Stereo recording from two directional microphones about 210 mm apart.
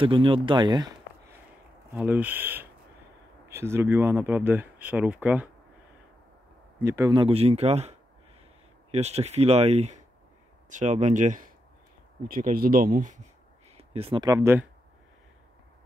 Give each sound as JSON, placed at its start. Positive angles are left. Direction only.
{"t": 0.0, "sound": "speech", "side_deg": -25}
{"t": 2.0, "sound": "speech", "side_deg": -10}
{"t": 6.8, "sound": "speech", "side_deg": -15}
{"t": 8.9, "sound": "speech", "side_deg": -30}